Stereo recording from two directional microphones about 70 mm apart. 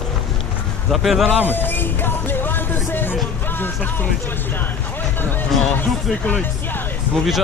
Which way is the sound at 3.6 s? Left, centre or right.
Left.